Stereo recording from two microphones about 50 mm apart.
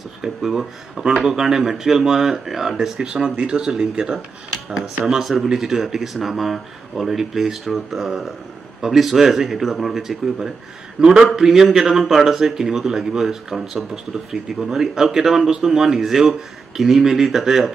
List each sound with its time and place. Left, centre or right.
0.2 s speech: centre